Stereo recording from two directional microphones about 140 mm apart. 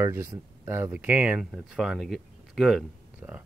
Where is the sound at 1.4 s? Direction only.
Centre (ahead or behind).